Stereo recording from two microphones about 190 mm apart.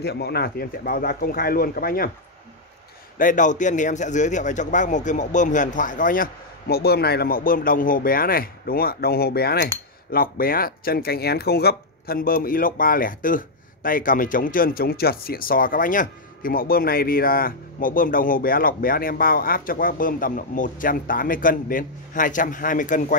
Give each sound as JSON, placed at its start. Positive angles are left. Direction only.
{"t": 0.0, "sound": "speech", "side_deg": 60}
{"t": 3.2, "sound": "speech", "side_deg": 45}